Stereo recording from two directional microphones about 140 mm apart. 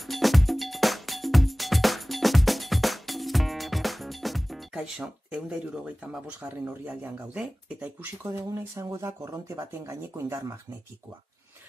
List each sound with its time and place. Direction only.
0.0 s music: centre (ahead or behind)
6.0 s speech: 10° right (ahead or behind)